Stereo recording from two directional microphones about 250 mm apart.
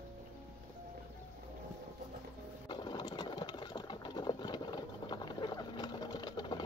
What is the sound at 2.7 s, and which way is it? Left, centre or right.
Engine, centre.